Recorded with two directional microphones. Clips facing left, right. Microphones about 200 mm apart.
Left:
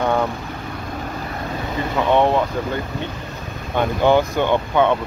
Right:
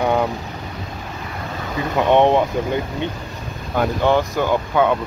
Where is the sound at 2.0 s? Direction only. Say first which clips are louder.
Right 2 dB; 20° right (ahead or behind).